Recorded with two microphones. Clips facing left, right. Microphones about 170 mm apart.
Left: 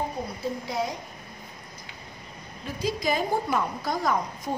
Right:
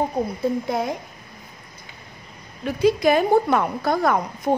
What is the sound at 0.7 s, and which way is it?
Speech, 55° right (ahead or behind).